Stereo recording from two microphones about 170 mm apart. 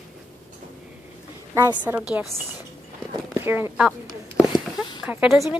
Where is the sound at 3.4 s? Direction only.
15° right (ahead or behind).